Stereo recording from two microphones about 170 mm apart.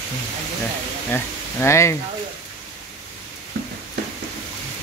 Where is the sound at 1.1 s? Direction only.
15° left (ahead or behind).